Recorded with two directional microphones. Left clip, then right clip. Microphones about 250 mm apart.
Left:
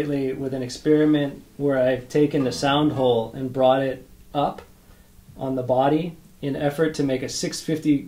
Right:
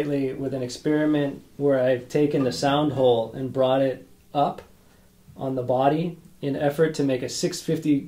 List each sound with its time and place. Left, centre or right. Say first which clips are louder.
0.1 s speech: left 1 dB; centre